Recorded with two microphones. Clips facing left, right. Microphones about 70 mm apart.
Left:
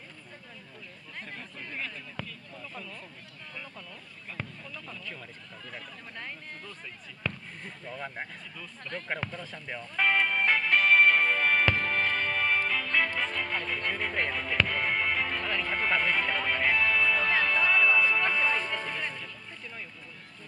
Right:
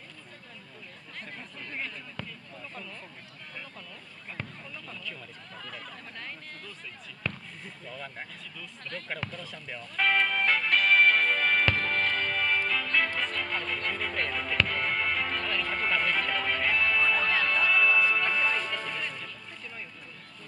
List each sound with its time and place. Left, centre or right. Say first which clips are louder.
7.9 s speech: left 4 dB; left
9.9 s music: even; centre
14.0 s speech: left 2 dB; left
14.5 s music: left 1 dB; centre
16.9 s music: even; centre
17.3 s music: left 1 dB; left